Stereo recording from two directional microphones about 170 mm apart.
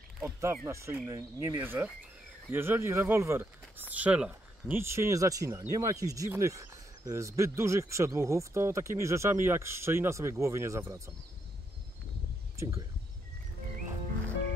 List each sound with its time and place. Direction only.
0.2 s speech: 15° right (ahead or behind)